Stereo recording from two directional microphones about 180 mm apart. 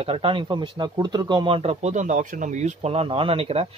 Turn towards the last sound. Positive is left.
turn(degrees=-35)  # may be behind; listen again after turning